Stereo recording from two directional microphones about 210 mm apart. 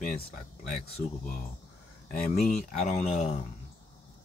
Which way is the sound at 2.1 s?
35° left (ahead or behind).